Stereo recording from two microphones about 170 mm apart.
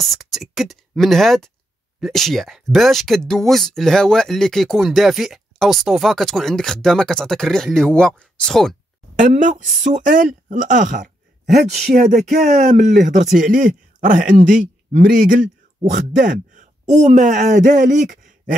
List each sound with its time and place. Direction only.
0.1 s speech: centre (ahead or behind)
9.2 s a woman's voice: 50° right (ahead or behind)